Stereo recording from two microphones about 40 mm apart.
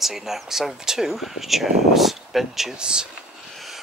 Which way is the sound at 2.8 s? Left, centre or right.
Right.